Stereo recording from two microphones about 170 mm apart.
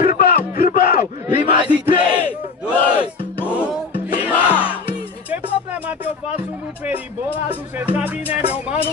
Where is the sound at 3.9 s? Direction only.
55° left (ahead or behind).